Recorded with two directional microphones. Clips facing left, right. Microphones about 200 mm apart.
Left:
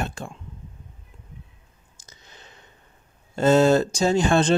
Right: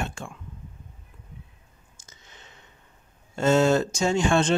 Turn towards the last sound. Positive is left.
turn(degrees=35)  # may be behind; listen again after turning